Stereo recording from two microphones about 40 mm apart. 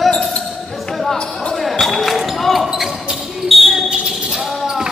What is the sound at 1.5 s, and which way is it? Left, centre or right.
Basketball bounce, centre.